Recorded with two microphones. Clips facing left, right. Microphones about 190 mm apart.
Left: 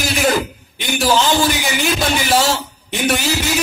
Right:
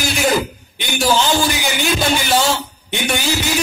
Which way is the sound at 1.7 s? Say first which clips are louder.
Even; centre (ahead or behind).